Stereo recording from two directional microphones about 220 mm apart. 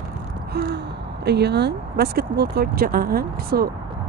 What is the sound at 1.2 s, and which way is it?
Speech, 50° right (ahead or behind).